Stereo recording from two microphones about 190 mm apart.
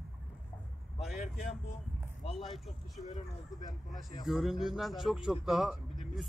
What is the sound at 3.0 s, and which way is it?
Speech, 35° left (ahead or behind).